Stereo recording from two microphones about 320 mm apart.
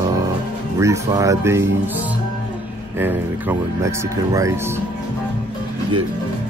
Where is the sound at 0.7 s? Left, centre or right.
Centre.